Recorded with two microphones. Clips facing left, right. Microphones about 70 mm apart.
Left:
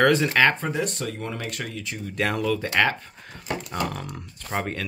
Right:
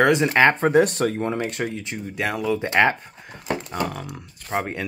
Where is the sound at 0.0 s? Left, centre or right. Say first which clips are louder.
Right 2 dB; centre.